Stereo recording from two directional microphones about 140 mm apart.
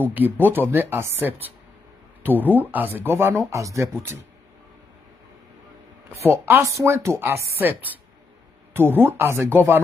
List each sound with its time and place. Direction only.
0.0 s speech: 15° right (ahead or behind)
6.2 s speech: 15° right (ahead or behind)
8.7 s speech: 15° right (ahead or behind)